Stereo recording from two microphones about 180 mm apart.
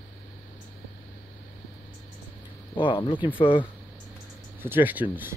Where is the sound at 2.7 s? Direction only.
30° left (ahead or behind).